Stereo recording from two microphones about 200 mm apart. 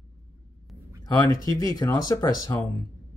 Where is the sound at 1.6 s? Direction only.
15° left (ahead or behind).